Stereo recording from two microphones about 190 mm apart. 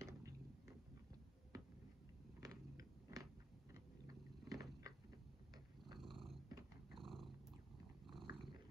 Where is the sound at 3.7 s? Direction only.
20° right (ahead or behind).